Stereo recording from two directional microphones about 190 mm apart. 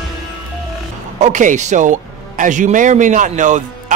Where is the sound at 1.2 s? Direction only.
40° right (ahead or behind).